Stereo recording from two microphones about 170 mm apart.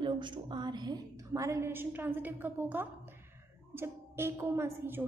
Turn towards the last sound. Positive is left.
turn(degrees=-15)  # may be behind; listen again after turning